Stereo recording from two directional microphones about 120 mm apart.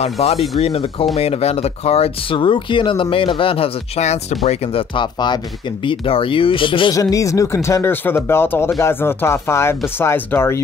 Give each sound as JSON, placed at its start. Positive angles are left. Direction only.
{"t": 0.0, "sound": "speech", "side_deg": 60}
{"t": 2.3, "sound": "speech", "side_deg": 45}
{"t": 4.9, "sound": "speech", "side_deg": 40}
{"t": 6.9, "sound": "speech", "side_deg": 30}